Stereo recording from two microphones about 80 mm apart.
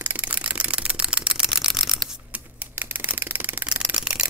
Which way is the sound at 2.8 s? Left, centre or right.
Right.